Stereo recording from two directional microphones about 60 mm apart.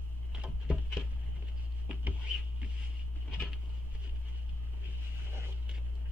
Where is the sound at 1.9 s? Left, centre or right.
Right.